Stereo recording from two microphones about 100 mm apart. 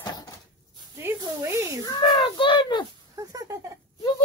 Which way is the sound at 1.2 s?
30° right (ahead or behind).